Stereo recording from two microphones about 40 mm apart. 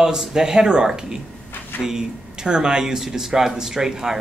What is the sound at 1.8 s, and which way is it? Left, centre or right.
Speech, centre.